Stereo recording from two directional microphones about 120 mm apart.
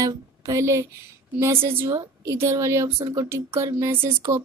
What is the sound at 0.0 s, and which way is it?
A woman's voice, 25° right (ahead or behind).